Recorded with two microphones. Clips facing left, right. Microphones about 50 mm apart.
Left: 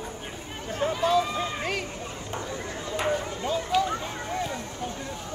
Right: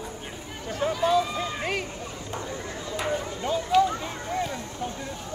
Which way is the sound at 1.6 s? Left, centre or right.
Centre.